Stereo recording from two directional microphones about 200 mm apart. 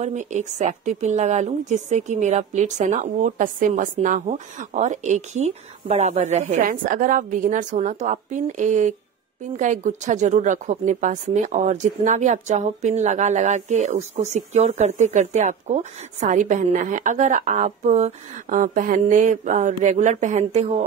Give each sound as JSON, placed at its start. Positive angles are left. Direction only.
{"t": 0.0, "sound": "a woman's voice", "side_deg": -35}